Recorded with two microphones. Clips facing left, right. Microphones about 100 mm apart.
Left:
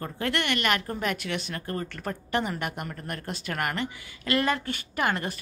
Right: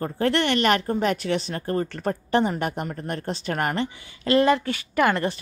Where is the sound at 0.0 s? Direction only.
35° right (ahead or behind).